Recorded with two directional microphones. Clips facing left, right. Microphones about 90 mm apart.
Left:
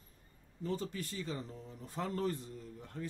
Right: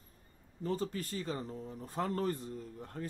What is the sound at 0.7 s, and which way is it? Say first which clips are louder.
Speech: right 3 dB; 45° right (ahead or behind).